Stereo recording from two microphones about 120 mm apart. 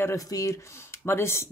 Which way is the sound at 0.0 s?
30° left (ahead or behind).